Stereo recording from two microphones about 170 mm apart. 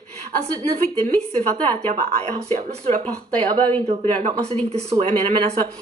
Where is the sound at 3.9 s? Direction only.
40° right (ahead or behind).